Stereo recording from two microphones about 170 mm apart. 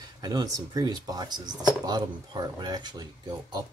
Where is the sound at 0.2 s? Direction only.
25° right (ahead or behind).